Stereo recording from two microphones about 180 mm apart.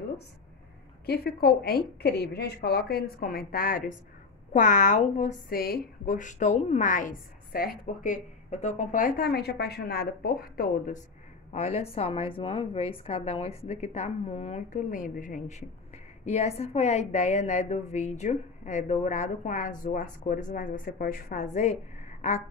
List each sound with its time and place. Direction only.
1.0 s a woman's voice: 60° left (ahead or behind)
11.5 s a woman's voice: 35° left (ahead or behind)
16.3 s a woman's voice: 35° left (ahead or behind)